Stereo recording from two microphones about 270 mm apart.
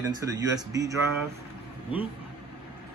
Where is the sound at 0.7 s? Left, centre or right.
Centre.